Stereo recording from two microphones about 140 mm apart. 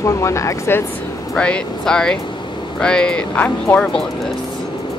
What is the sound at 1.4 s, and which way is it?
Speech, 10° left (ahead or behind).